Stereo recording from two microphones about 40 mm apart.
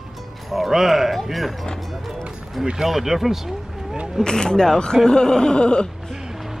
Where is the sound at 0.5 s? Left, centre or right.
Centre.